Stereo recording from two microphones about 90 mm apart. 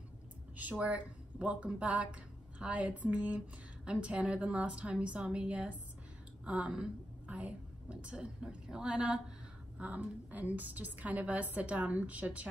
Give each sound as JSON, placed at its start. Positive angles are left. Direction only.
{"t": 0.6, "sound": "a woman's voice", "side_deg": -15}